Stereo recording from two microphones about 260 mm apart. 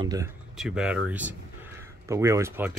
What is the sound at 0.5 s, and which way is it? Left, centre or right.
Speech, centre.